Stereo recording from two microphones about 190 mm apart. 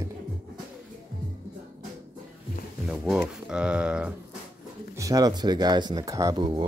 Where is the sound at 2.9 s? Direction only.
Centre (ahead or behind).